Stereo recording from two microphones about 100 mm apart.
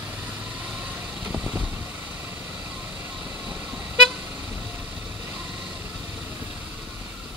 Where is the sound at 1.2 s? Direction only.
15° right (ahead or behind).